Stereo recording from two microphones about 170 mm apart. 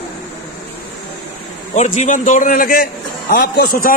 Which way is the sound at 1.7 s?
45° left (ahead or behind).